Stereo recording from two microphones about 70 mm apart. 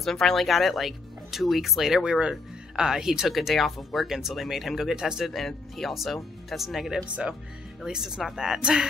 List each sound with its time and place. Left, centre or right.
0.0 s speech: centre
7.1 s speech: centre